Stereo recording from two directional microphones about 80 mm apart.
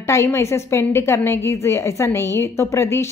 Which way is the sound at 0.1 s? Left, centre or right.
Left.